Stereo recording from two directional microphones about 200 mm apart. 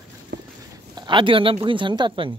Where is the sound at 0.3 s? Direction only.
55° right (ahead or behind).